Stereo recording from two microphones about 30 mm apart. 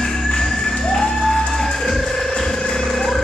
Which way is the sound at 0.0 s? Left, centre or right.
Centre.